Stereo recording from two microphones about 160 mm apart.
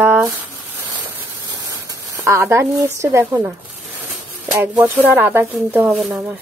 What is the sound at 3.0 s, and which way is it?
Speech, 15° right (ahead or behind).